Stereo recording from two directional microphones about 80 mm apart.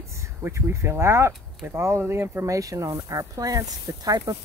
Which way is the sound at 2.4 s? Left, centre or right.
Right.